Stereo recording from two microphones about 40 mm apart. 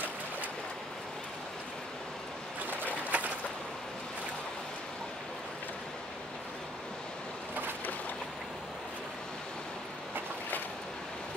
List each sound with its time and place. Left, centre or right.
2.8 s bird: right